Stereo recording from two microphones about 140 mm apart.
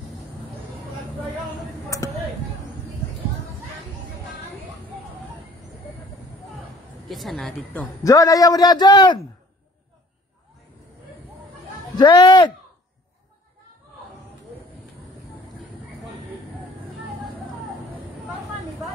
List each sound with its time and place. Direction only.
1.9 s a sound: 25° left (ahead or behind)
7.1 s a woman's voice: centre (ahead or behind)
8.0 s a man's voice: 25° left (ahead or behind)
12.0 s speech: 35° left (ahead or behind)